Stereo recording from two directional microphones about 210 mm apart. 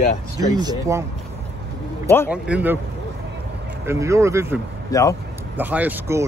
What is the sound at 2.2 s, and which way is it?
Speech, 5° right (ahead or behind).